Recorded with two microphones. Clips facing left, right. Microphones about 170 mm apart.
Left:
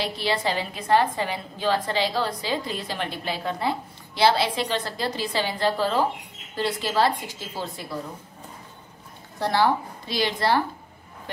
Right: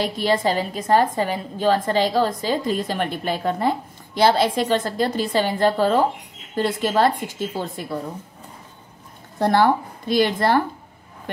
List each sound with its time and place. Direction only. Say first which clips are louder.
0.0 s a woman's voice: right 5 dB; 45° right (ahead or behind)
9.4 s a woman's voice: right 5 dB; 50° right (ahead or behind)